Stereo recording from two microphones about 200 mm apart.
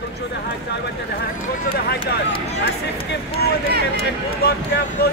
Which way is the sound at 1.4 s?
50° left (ahead or behind).